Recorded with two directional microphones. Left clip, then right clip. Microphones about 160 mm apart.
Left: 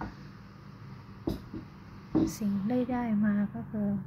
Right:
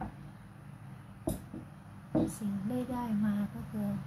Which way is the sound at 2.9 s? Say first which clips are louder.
Left 4 dB; 20° left (ahead or behind).